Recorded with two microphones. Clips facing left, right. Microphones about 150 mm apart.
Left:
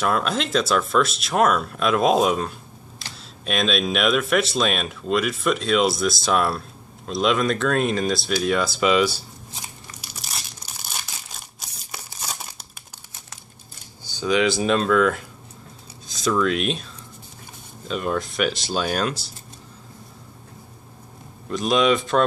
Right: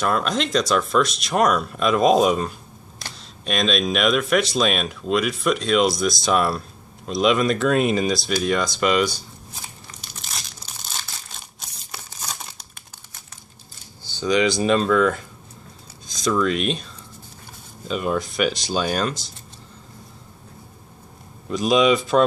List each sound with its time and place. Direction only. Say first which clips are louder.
0.0 s speech: right 1 dB; 5° left (ahead or behind)
10.1 s tearing: even; 10° left (ahead or behind)
14.2 s speech: right 1 dB; 5° left (ahead or behind)
17.8 s speech: right 1 dB; 5° right (ahead or behind)
21.5 s speech: right 2 dB; centre (ahead or behind)